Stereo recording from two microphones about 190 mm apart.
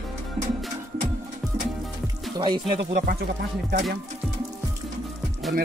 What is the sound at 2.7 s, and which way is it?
Speech, 45° right (ahead or behind).